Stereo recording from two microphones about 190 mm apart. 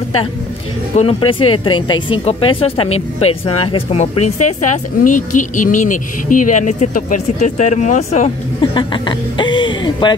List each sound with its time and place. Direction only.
0.9 s speech: 30° left (ahead or behind)
8.7 s speech: 25° left (ahead or behind)